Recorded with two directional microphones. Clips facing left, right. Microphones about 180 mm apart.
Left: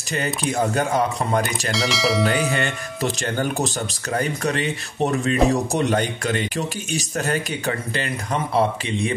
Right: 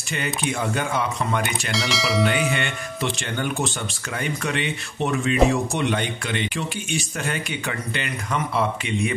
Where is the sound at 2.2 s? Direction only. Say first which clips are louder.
Left 1 dB; 40° left (ahead or behind).